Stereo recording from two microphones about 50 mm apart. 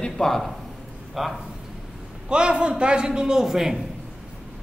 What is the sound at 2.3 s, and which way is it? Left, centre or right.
A woman's voice, centre.